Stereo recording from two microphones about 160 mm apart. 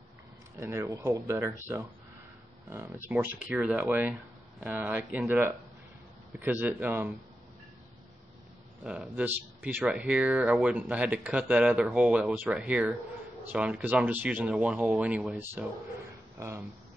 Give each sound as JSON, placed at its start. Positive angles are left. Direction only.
{"t": 0.6, "sound": "speech", "side_deg": -15}
{"t": 8.8, "sound": "speech", "side_deg": -10}